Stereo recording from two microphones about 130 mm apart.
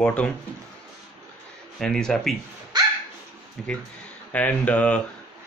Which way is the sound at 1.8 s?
5° left (ahead or behind).